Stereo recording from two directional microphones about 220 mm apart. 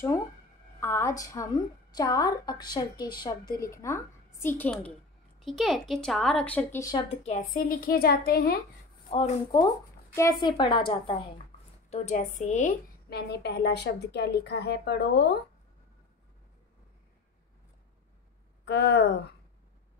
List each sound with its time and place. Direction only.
0.7 s a woman's voice: 10° left (ahead or behind); by 8.5 s 45° left (ahead or behind)
9.1 s a woman's voice: 25° left (ahead or behind)
13.1 s a woman's voice: 50° left (ahead or behind)
18.7 s a woman's voice: 50° left (ahead or behind)